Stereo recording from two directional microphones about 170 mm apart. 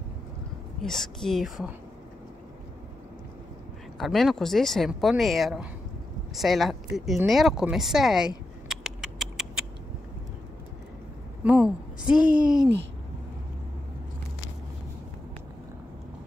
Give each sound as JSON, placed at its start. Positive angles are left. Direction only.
{"t": 0.8, "sound": "speech", "side_deg": 0}
{"t": 4.0, "sound": "speech", "side_deg": 0}
{"t": 8.6, "sound": "rodents", "side_deg": -5}
{"t": 11.4, "sound": "a woman's voice", "side_deg": -5}